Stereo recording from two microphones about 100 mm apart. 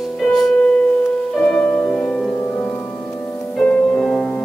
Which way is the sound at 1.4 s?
10° left (ahead or behind).